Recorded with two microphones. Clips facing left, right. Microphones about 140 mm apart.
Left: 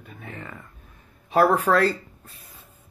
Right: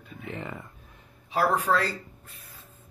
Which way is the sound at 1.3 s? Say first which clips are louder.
Left 5 dB; 55° left (ahead or behind).